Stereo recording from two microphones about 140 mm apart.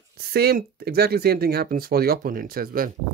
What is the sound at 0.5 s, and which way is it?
Speech, 90° right.